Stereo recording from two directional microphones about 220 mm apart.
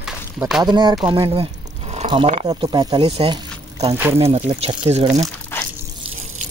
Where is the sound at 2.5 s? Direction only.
20° right (ahead or behind).